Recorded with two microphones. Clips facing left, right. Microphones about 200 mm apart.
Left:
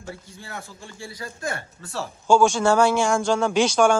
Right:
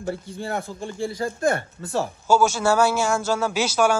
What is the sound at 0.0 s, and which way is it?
Speech, 55° right (ahead or behind).